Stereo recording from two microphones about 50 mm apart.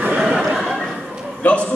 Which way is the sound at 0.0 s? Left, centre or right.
Centre.